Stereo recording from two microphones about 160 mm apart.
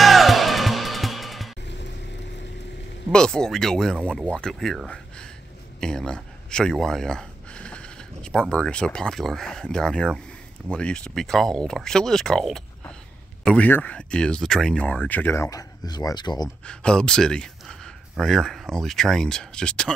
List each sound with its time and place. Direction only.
0.0 s music: centre (ahead or behind)
1.6 s vehicle: 90° left
3.1 s speech: 5° left (ahead or behind); by 16.4 s 25° left (ahead or behind)
16.6 s speech: 5° left (ahead or behind)